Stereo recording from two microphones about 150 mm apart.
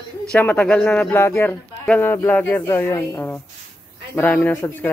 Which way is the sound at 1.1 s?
15° left (ahead or behind).